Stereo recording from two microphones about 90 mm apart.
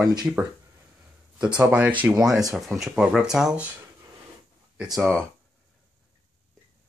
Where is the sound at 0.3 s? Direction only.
20° right (ahead or behind).